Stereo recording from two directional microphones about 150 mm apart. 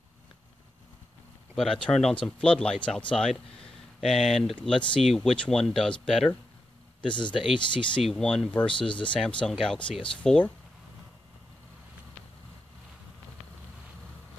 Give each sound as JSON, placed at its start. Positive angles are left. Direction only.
{"t": 1.5, "sound": "speech", "side_deg": 5}
{"t": 7.1, "sound": "speech", "side_deg": 30}
{"t": 8.0, "sound": "speech", "side_deg": 5}
{"t": 8.9, "sound": "speech", "side_deg": 35}
{"t": 9.4, "sound": "speech", "side_deg": 5}